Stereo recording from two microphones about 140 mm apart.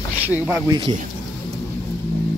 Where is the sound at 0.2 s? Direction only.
10° right (ahead or behind).